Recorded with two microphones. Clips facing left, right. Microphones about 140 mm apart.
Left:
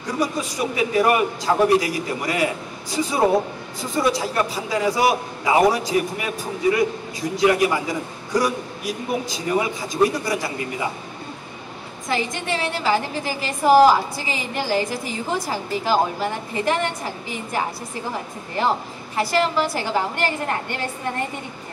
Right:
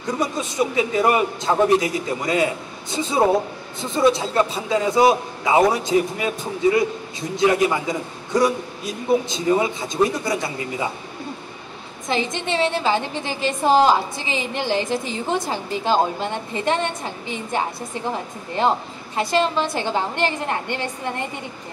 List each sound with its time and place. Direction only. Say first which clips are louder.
0.2 s a woman's voice: even; 25° right (ahead or behind)
12.1 s a woman's voice: right 1 dB; 20° right (ahead or behind)
19.1 s a woman's voice: even; 20° right (ahead or behind)